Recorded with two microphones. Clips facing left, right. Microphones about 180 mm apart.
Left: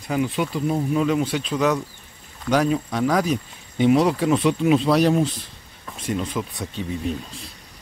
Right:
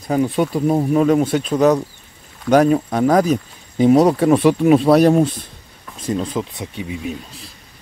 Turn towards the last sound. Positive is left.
turn(degrees=-5)  # may be behind; listen again after turning